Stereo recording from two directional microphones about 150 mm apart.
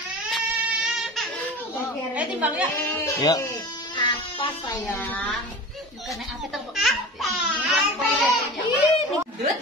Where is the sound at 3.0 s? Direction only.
25° left (ahead or behind).